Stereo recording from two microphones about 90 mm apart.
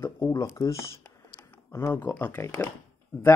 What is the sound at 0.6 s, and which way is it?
Speech, 35° left (ahead or behind).